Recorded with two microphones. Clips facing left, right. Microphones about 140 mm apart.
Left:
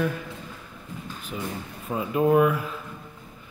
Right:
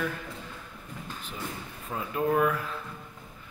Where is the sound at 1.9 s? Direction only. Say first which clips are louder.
Left 6 dB; 15° left (ahead or behind).